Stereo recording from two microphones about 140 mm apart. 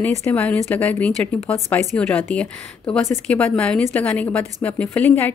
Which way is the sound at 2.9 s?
5° left (ahead or behind).